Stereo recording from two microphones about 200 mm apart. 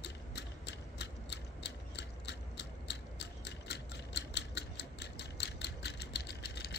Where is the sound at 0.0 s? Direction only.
55° left (ahead or behind).